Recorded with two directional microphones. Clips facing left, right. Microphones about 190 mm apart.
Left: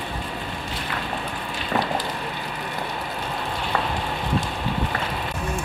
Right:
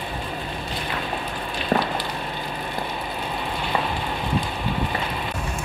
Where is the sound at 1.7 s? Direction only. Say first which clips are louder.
Right 3 dB; 40° right (ahead or behind).